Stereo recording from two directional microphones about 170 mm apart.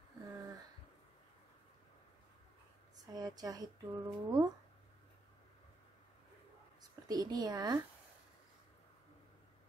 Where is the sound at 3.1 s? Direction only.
20° right (ahead or behind).